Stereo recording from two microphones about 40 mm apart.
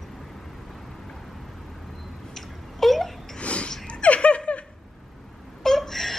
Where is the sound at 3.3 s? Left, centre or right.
Left.